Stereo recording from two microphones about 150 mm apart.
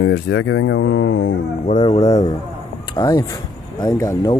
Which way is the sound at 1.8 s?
45° left (ahead or behind).